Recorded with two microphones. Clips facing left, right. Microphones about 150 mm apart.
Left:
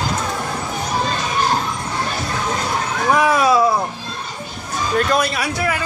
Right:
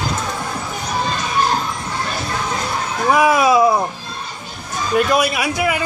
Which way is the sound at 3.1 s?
10° right (ahead or behind).